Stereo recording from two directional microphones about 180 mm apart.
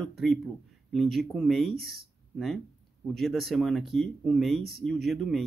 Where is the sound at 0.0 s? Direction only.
Centre (ahead or behind).